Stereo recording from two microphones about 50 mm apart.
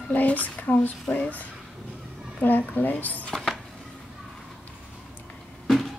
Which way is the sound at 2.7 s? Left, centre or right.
Left.